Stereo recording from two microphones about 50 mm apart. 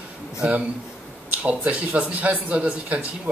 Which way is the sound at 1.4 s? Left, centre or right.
Right.